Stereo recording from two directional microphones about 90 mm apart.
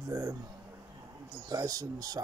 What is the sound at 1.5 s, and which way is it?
Speech, 40° right (ahead or behind).